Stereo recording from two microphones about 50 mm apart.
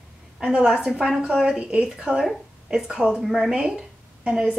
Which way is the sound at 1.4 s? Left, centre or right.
Right.